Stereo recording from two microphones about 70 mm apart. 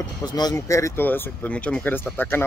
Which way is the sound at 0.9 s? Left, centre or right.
Left.